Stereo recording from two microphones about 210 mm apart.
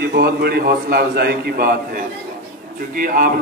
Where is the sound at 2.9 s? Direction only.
40° right (ahead or behind).